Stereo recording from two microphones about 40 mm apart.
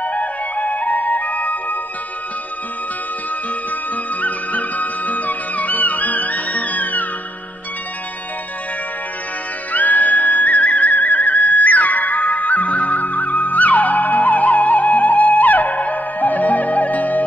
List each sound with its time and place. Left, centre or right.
0.0 s music: left
3.9 s music: left
9.7 s music: left